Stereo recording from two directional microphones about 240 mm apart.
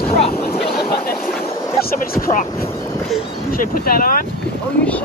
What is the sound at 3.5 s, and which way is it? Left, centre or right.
Speech, left.